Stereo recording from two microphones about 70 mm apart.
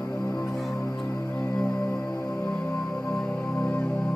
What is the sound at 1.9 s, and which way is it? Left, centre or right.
Music, centre.